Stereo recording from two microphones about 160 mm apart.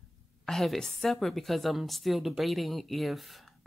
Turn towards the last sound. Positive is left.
turn(degrees=0)  # may be behind; listen again after turning